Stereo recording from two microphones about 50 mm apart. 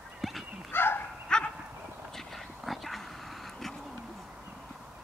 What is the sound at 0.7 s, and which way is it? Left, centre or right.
Bow-wow, left.